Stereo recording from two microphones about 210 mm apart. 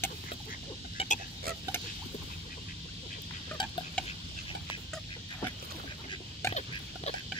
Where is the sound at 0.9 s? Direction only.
30° left (ahead or behind).